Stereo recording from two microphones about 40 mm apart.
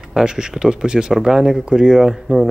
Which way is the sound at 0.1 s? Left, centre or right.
Centre.